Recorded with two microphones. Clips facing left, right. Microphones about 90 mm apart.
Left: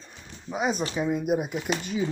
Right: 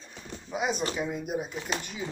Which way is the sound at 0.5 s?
45° left (ahead or behind).